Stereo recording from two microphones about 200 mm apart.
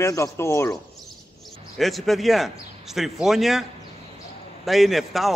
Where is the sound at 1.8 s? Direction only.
Centre (ahead or behind).